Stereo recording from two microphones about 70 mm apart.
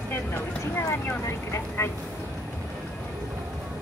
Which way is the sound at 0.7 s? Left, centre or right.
Left.